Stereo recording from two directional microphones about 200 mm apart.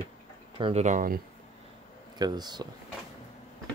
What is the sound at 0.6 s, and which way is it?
Speech, 35° right (ahead or behind).